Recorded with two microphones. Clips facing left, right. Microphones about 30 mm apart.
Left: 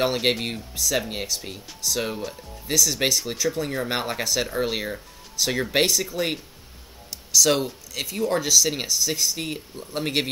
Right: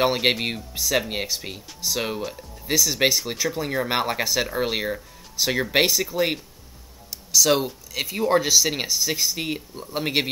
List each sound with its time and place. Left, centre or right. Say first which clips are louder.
0.0 s speech: right 2 dB; centre